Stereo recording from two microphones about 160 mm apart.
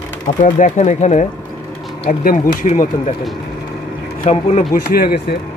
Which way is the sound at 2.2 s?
60° left (ahead or behind).